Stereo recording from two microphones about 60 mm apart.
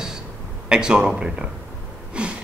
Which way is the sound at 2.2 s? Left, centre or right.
Centre.